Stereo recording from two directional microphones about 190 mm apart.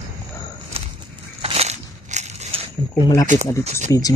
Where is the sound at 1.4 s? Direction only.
35° right (ahead or behind).